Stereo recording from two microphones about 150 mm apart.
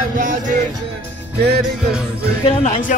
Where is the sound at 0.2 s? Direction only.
60° right (ahead or behind).